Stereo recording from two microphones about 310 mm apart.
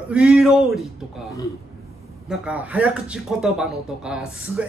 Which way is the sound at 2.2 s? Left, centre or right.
Centre.